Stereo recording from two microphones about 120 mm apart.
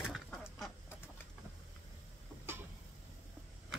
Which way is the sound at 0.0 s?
Centre (ahead or behind).